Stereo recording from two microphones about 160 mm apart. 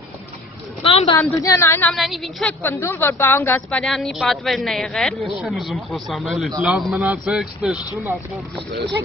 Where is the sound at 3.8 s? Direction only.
Centre (ahead or behind).